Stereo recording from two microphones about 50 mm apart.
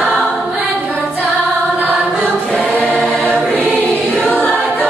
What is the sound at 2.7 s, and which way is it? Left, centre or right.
Choir, centre.